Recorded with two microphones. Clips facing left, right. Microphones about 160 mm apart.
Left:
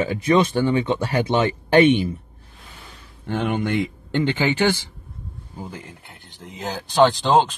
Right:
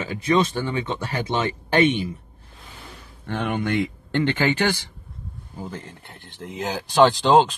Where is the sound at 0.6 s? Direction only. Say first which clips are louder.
Left 6 dB; 30° left (ahead or behind).